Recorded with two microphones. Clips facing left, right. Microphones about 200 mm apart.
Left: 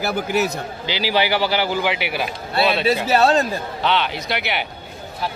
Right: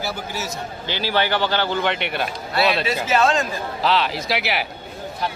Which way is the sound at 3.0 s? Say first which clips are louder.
Left 1 dB; 35° left (ahead or behind).